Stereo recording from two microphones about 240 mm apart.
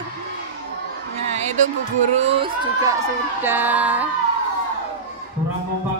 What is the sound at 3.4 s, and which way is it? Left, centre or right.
Speech, centre.